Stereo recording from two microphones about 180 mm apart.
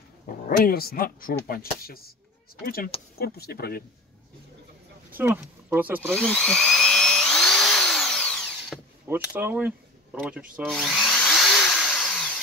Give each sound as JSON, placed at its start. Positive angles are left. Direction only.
{"t": 0.3, "sound": "speech", "side_deg": 50}
{"t": 5.1, "sound": "speech", "side_deg": -10}
{"t": 6.1, "sound": "drill", "side_deg": 5}
{"t": 9.0, "sound": "speech", "side_deg": -10}
{"t": 10.2, "sound": "drill", "side_deg": -5}